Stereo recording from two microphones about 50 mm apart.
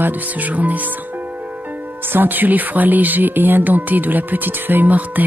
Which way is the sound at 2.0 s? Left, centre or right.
Right.